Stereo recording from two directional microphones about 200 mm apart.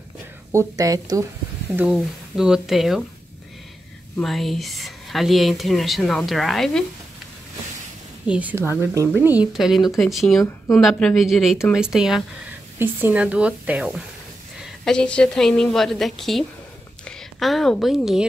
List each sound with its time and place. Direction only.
0.5 s a woman's voice: 15° right (ahead or behind)
1.7 s speech: 5° right (ahead or behind)
4.2 s speech: centre (ahead or behind)
8.3 s a woman's voice: 10° right (ahead or behind)